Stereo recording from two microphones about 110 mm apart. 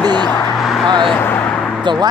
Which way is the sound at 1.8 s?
45° right (ahead or behind).